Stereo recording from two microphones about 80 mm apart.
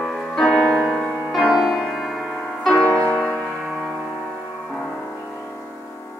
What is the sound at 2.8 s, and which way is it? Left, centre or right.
Music, centre.